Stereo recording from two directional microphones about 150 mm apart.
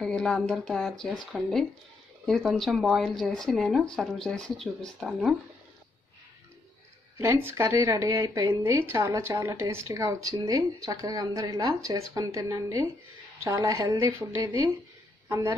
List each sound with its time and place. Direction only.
0.0 s speech: 5° left (ahead or behind)
7.2 s speech: 15° right (ahead or behind)